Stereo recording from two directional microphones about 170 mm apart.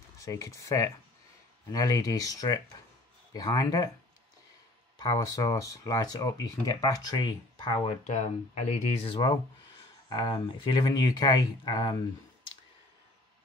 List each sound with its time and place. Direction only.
0.2 s speech: 20° left (ahead or behind)
4.9 s speech: 25° left (ahead or behind)